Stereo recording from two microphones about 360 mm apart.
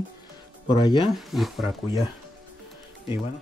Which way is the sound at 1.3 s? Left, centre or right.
Centre.